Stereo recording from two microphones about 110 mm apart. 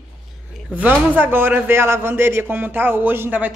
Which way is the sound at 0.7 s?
15° right (ahead or behind).